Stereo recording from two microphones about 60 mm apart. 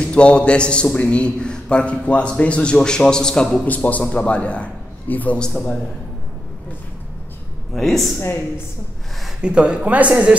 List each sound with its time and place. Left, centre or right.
0.0 s a man's voice: centre
3.6 s a man's voice: left
7.7 s speech: centre
9.4 s speech: centre